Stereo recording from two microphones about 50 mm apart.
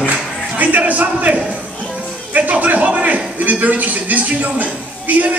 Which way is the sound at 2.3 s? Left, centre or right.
Right.